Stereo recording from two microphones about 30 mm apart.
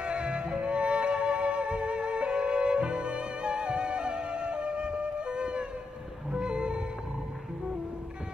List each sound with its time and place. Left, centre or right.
0.0 s music: right